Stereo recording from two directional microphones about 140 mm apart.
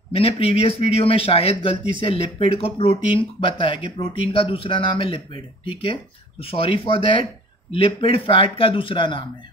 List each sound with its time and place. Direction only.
0.1 s a man's voice: 45° left (ahead or behind)